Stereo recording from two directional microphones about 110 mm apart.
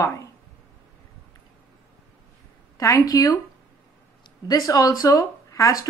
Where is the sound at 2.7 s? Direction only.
30° left (ahead or behind).